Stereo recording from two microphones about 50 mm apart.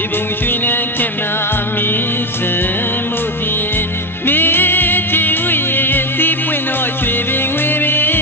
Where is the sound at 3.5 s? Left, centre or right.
Left.